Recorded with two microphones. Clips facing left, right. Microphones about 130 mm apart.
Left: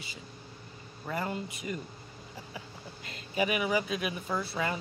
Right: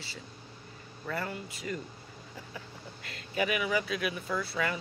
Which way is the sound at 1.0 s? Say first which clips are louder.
Left 2 dB; 20° left (ahead or behind).